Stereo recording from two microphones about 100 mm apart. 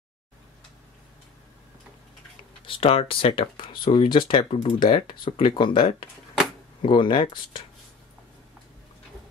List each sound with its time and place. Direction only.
2.6 s speech: 65° left (ahead or behind)
4.4 s speech: 70° left (ahead or behind); by 5.9 s 55° left (ahead or behind)
6.9 s speech: 55° left (ahead or behind)